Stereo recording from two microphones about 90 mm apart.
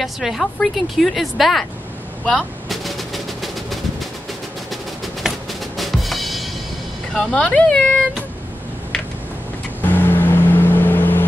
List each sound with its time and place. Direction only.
0.0 s speech: centre (ahead or behind)
2.2 s a sound: 5° left (ahead or behind)
5.2 s music: centre (ahead or behind)
7.2 s speech: 10° left (ahead or behind)
9.8 s vehicle: 20° left (ahead or behind)